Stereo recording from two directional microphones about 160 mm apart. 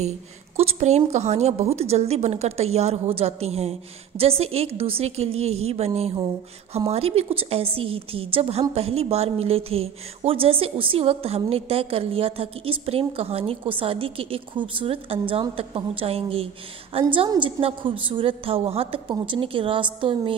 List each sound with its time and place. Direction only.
0.6 s a woman's voice: 40° right (ahead or behind)